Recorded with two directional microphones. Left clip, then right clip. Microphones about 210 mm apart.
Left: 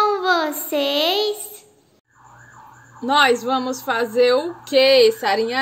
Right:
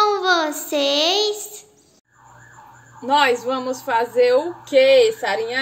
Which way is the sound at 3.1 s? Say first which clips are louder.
Left 1 dB; 40° left (ahead or behind).